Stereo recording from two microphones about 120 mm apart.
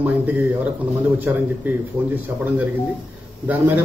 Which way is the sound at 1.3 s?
15° right (ahead or behind).